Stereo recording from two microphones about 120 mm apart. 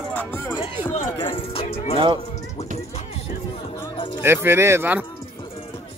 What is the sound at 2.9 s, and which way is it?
Music, 65° left (ahead or behind).